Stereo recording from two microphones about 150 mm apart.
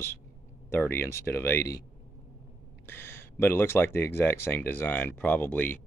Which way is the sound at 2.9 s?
15° left (ahead or behind).